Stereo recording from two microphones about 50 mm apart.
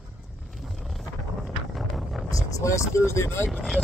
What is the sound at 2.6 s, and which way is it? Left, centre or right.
Speech, left.